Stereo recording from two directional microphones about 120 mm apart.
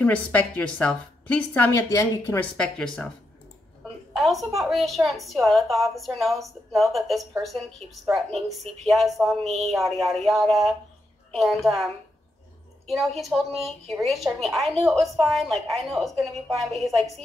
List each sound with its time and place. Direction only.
0.0 s a woman's voice: 15° left (ahead or behind)
1.7 s a woman's voice: 25° left (ahead or behind)
2.5 s a woman's voice: 5° left (ahead or behind)
3.8 s a sound: centre (ahead or behind)
4.6 s a woman's voice: centre (ahead or behind)
12.9 s a woman's voice: centre (ahead or behind)